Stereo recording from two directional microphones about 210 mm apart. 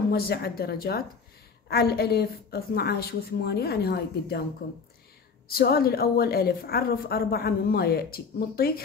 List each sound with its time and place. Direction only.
0.1 s a woman's voice: 50° left (ahead or behind)
5.5 s a woman's voice: 45° left (ahead or behind)